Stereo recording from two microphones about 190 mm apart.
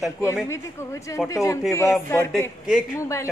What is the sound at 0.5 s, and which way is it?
A woman's voice, 15° left (ahead or behind).